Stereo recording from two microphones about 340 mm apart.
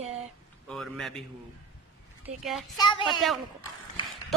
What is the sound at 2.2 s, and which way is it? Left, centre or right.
Speech, centre.